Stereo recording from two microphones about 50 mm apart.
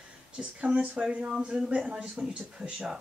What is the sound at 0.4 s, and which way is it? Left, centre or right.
Speech, right.